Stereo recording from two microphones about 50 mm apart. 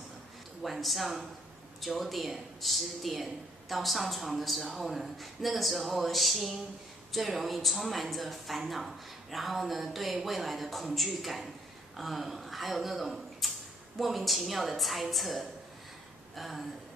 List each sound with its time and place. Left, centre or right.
0.6 s speech: centre